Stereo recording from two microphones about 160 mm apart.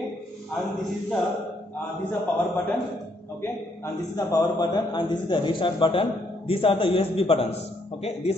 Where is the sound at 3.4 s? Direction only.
20° left (ahead or behind).